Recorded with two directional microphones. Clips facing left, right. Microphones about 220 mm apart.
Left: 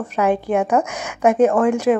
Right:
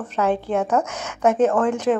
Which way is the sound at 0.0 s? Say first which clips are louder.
Left 3 dB; 10° left (ahead or behind).